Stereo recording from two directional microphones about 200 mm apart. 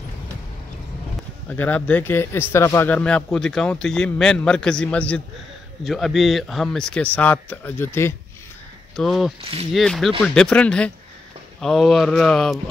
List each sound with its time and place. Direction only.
1.5 s a man's voice: 5° left (ahead or behind)
8.9 s a man's voice: centre (ahead or behind)
9.4 s speech: 30° right (ahead or behind)
9.8 s a man's voice: centre (ahead or behind)